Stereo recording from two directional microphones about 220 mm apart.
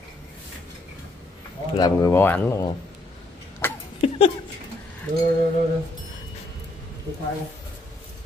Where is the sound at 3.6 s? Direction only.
10° left (ahead or behind).